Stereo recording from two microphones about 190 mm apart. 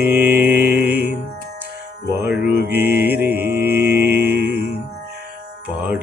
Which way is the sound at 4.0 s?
55° right (ahead or behind).